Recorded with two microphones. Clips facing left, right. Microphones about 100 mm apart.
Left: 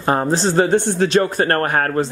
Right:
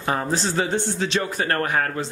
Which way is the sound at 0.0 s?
40° left (ahead or behind).